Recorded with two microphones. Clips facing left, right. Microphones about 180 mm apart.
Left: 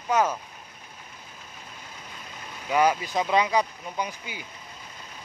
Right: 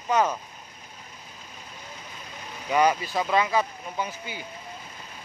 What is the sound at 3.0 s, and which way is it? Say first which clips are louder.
Speech: left 1 dB; 20° left (ahead or behind).